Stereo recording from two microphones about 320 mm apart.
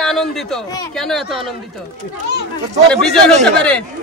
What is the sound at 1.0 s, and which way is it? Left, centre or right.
Speech, centre.